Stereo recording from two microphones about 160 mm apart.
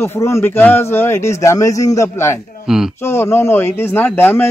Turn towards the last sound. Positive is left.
turn(degrees=15)  # may be behind; listen again after turning